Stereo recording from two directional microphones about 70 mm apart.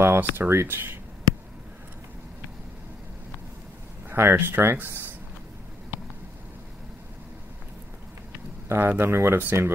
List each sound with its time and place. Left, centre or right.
0.0 s a sound: right
0.4 s speech: right
4.1 s speech: right
8.6 s speech: right